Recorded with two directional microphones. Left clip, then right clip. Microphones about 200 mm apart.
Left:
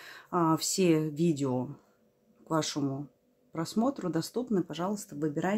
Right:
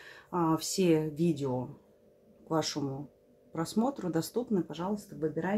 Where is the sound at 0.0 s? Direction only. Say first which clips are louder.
Left 3 dB; 30° left (ahead or behind).